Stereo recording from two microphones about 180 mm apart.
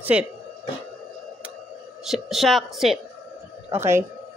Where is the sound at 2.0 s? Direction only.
Centre (ahead or behind).